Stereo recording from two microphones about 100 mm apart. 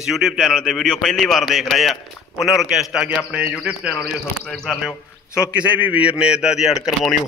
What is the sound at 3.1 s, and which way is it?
Speech, 15° right (ahead or behind).